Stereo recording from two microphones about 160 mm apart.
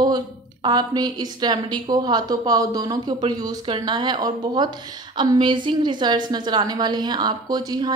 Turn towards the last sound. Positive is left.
turn(degrees=-25)  # may be behind; listen again after turning